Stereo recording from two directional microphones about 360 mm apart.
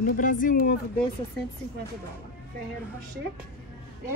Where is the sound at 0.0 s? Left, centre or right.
Left.